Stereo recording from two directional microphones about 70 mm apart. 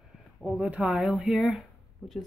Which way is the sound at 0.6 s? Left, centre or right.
Centre.